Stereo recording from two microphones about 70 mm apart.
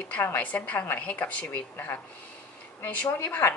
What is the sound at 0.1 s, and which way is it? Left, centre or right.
A woman's voice, left.